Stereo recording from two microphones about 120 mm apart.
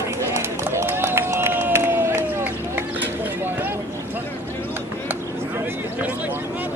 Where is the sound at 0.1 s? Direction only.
25° right (ahead or behind).